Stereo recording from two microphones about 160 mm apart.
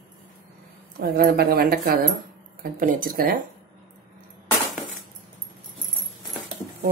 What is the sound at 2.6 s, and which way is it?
Speech, 60° right (ahead or behind).